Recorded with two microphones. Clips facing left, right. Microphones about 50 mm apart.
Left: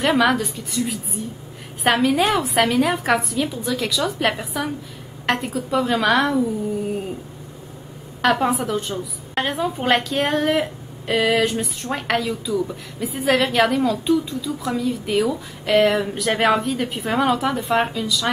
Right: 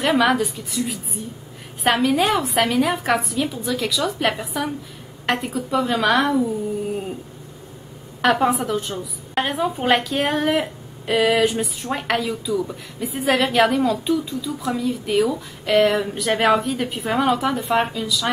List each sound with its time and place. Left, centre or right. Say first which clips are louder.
0.0 s a woman's voice: even; centre
8.2 s a woman's voice: right 1 dB; centre